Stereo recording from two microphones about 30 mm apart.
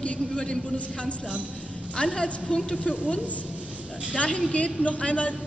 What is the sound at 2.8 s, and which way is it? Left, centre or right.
Speech, left.